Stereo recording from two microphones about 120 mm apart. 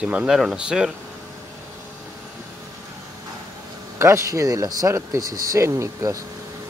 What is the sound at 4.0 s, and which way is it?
Speech, 25° right (ahead or behind).